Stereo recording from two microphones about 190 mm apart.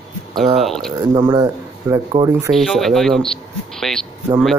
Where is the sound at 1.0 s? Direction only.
20° right (ahead or behind).